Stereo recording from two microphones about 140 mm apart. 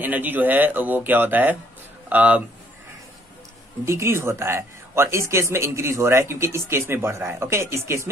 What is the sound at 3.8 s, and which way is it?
A man's voice, 20° right (ahead or behind).